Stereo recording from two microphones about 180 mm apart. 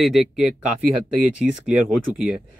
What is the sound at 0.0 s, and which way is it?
Speech, centre (ahead or behind).